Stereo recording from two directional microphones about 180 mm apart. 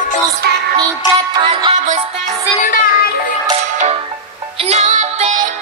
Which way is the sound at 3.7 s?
35° right (ahead or behind).